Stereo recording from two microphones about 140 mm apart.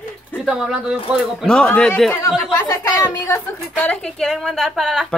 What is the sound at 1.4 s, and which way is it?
Speech, 5° left (ahead or behind).